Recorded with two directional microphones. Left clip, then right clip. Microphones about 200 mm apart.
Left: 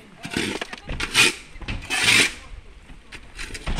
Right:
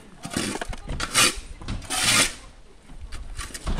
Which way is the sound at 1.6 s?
65° right (ahead or behind).